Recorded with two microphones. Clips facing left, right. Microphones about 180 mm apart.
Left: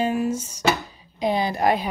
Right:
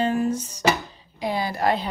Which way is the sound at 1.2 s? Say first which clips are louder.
Left 3 dB; 20° left (ahead or behind).